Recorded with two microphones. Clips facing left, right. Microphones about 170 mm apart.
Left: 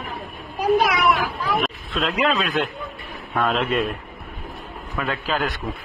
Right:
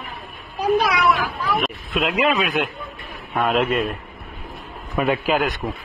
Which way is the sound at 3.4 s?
5° right (ahead or behind).